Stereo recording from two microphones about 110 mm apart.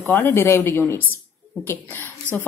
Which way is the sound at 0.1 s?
15° left (ahead or behind).